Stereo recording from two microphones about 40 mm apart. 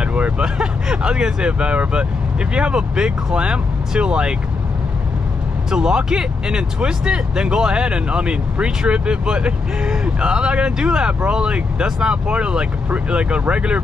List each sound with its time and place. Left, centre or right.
0.0 s speech: right
5.7 s speech: centre